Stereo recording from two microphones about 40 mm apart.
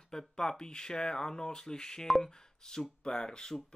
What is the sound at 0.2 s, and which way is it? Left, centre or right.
Speech, centre.